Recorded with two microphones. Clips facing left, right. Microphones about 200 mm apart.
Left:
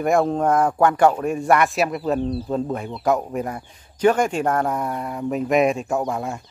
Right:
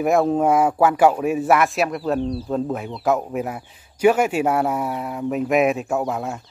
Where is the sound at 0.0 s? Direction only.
Centre (ahead or behind).